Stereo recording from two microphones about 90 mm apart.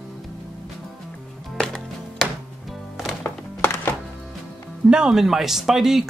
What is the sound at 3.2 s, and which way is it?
Music, 30° left (ahead or behind).